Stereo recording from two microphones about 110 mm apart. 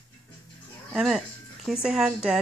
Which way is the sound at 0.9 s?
Centre (ahead or behind).